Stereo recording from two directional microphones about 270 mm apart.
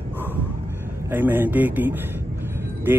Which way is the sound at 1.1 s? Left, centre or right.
Centre.